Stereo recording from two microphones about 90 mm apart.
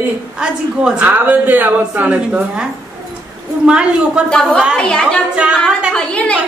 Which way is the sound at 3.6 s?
10° right (ahead or behind).